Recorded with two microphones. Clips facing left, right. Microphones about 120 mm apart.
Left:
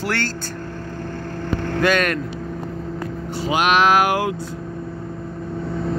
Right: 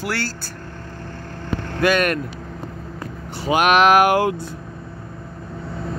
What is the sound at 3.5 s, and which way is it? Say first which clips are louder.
Vehicle: right 2 dB; 45° right (ahead or behind).